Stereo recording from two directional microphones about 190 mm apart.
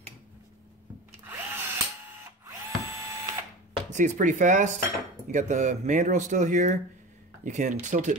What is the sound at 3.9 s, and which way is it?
Speech, 40° right (ahead or behind).